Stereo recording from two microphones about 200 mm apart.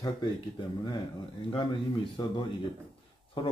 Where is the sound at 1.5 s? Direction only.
25° left (ahead or behind).